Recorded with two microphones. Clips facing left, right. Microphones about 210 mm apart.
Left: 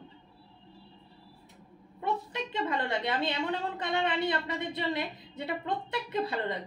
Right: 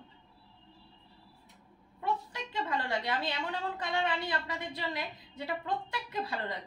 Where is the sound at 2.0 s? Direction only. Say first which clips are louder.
Left 3 dB; 20° left (ahead or behind).